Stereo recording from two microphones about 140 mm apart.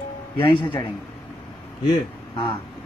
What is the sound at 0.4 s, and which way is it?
Speech, 35° left (ahead or behind).